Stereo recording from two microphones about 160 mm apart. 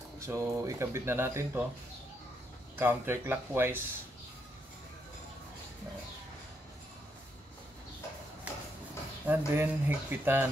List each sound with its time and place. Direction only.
0.2 s speech: 15° right (ahead or behind)
2.7 s speech: 15° right (ahead or behind)
9.3 s speech: 10° right (ahead or behind)